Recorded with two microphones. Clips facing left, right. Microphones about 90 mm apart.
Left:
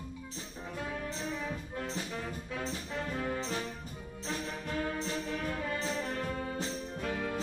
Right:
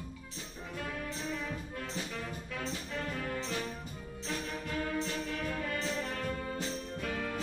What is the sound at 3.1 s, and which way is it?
Music, 25° left (ahead or behind).